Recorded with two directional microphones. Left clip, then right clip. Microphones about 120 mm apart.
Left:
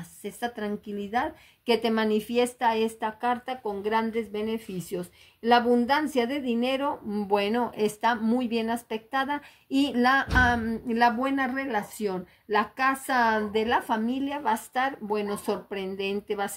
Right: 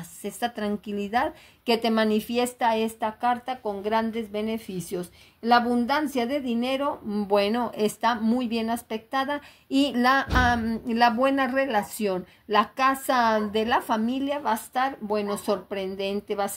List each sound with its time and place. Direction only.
0.2 s a woman's voice: 35° right (ahead or behind); by 16.5 s 10° right (ahead or behind)